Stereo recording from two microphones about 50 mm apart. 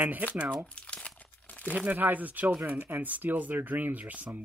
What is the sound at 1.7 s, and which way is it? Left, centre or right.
Speech, right.